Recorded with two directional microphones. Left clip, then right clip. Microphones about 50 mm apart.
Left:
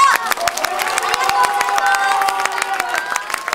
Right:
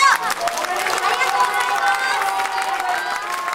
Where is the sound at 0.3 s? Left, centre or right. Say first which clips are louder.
Left 3 dB; left.